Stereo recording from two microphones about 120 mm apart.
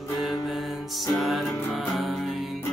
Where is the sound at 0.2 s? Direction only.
Centre (ahead or behind).